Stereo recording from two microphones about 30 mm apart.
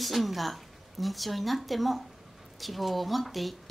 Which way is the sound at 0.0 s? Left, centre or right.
Centre.